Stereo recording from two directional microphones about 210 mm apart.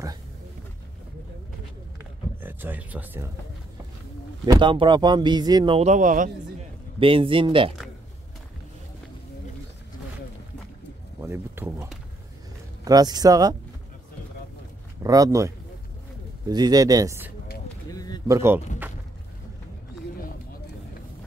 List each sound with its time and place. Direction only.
2.4 s speech: 10° right (ahead or behind)
4.5 s speech: 25° right (ahead or behind)
7.0 s speech: 25° right (ahead or behind)
11.1 s a sound: 10° right (ahead or behind)
12.8 s speech: 20° right (ahead or behind)
15.0 s speech: 15° right (ahead or behind)
17.9 s a sound: 20° left (ahead or behind)
18.2 s speech: 15° right (ahead or behind)